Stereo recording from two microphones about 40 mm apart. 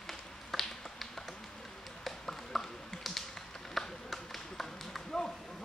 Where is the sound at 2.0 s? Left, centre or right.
Centre.